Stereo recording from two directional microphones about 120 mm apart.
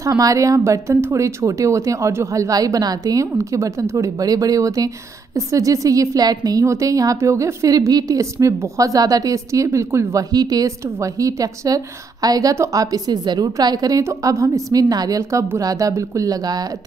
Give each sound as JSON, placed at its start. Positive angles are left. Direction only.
{"t": 0.0, "sound": "speech", "side_deg": -25}